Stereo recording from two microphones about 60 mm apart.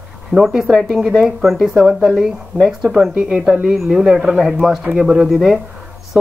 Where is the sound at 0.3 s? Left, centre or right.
Centre.